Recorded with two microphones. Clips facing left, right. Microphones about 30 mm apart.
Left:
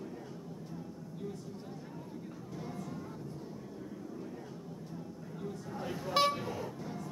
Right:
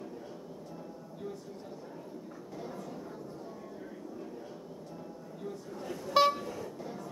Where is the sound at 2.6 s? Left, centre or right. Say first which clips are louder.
Right 1 dB; centre.